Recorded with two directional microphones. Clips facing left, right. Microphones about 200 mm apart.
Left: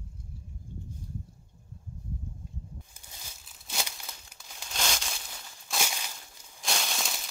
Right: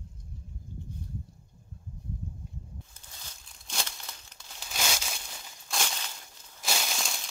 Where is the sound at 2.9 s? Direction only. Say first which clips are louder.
Left 1 dB; 10° left (ahead or behind).